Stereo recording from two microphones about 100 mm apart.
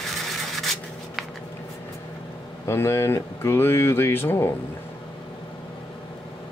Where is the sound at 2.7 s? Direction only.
25° left (ahead or behind).